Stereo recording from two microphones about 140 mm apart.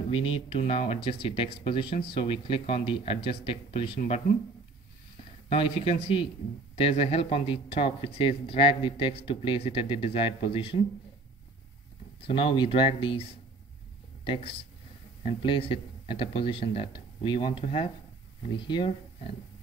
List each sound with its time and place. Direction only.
0.1 s speech: 45° left (ahead or behind)
5.5 s speech: 45° left (ahead or behind)
12.3 s speech: 40° left (ahead or behind)